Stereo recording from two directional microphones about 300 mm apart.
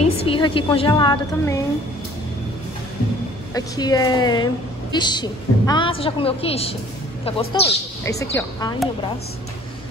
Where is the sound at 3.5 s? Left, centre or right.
Centre.